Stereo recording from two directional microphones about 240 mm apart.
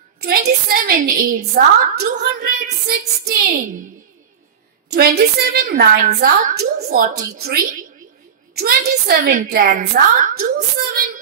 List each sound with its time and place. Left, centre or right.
0.2 s a woman's voice: right
4.8 s a woman's voice: right